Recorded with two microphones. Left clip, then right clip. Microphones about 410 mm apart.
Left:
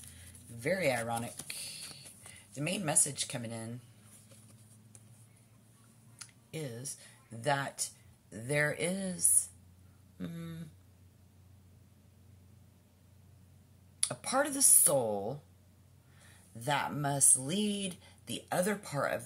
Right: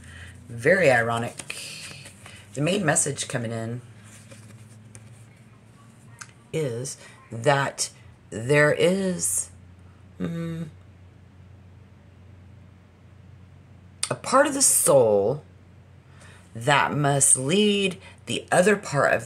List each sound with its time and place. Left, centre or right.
0.6 s speech: left
6.1 s speech: left
14.0 s speech: left
16.5 s speech: left